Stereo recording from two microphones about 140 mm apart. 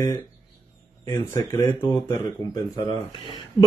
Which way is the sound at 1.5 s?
15° left (ahead or behind).